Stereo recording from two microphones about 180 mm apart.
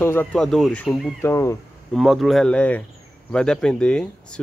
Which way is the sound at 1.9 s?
Centre (ahead or behind).